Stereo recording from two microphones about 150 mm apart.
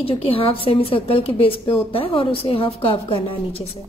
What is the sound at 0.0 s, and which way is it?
A woman's voice, 40° left (ahead or behind).